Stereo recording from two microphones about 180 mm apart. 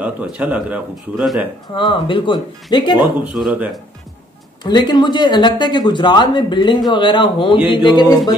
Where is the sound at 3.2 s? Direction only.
5° right (ahead or behind).